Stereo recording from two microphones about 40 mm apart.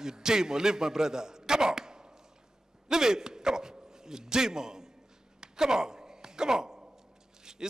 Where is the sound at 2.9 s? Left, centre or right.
Centre.